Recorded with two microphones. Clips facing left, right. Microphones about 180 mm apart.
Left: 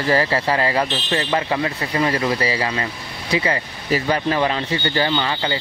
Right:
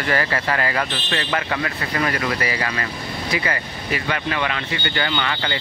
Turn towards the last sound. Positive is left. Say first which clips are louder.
# left 3 dB
turn(degrees=25)  # may be behind; listen again after turning